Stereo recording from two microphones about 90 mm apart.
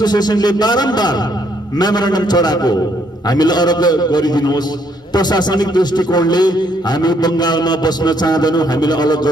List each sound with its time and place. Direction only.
0.0 s speech: 50° left (ahead or behind)